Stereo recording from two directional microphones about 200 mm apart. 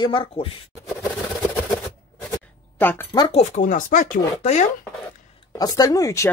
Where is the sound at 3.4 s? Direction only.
40° left (ahead or behind).